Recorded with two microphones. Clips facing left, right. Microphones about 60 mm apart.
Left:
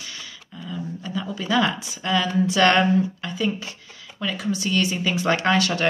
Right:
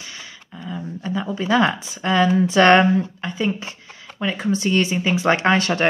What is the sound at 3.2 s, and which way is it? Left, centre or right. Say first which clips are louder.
Speech: right 2 dB; right.